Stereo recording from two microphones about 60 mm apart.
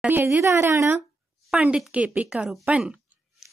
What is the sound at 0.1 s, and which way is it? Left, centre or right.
Speech, right.